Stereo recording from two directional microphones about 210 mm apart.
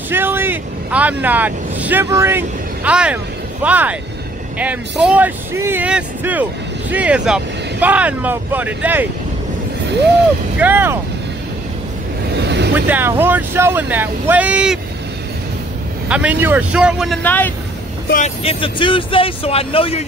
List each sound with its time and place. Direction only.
0.1 s speech: 10° right (ahead or behind)
10.6 s speech: 10° right (ahead or behind)
12.4 s vehicle: 55° right (ahead or behind)
12.7 s speech: 10° right (ahead or behind)
16.1 s speech: 5° right (ahead or behind)
17.2 s speech: 10° left (ahead or behind)
18.1 s speech: 30° left (ahead or behind)